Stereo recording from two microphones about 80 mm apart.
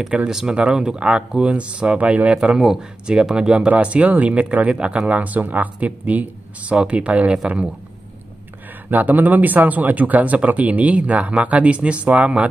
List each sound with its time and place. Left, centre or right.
0.1 s speech: centre
8.9 s speech: right